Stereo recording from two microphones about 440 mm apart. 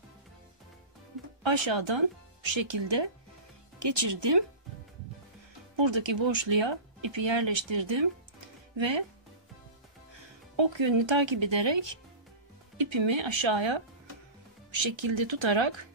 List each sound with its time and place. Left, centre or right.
1.4 s speech: right
5.8 s speech: right
10.5 s speech: right
12.7 s speech: right